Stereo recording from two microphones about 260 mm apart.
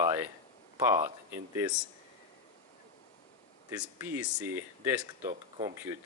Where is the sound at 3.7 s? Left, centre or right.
Centre.